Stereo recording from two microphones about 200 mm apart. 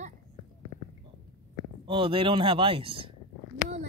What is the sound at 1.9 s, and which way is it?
Speech, 25° right (ahead or behind).